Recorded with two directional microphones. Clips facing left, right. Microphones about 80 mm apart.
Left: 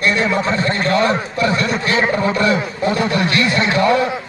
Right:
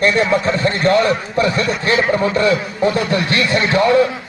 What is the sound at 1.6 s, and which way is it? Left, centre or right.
A man's voice, right.